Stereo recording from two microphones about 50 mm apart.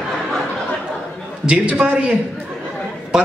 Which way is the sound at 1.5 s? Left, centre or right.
Right.